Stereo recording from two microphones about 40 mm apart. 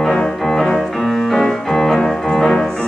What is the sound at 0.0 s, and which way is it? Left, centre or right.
Music, centre.